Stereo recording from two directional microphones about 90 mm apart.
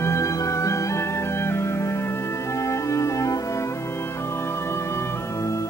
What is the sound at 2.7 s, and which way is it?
Music, 35° left (ahead or behind).